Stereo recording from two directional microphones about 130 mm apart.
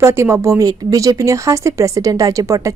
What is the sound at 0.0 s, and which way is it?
A woman's voice, 20° right (ahead or behind).